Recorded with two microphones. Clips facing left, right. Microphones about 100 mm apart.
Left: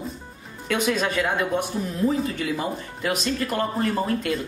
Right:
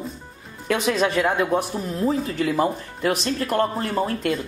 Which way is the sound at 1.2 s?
30° right (ahead or behind).